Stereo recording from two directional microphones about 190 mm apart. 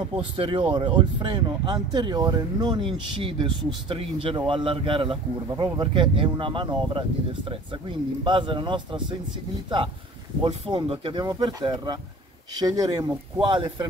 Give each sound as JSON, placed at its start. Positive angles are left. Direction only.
{"t": 0.1, "sound": "speech", "side_deg": -30}
{"t": 10.4, "sound": "speech", "side_deg": -25}